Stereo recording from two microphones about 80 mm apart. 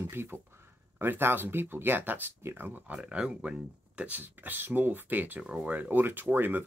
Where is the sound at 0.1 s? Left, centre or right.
Right.